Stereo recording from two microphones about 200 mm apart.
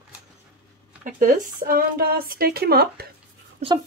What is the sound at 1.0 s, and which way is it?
Speech, 40° right (ahead or behind).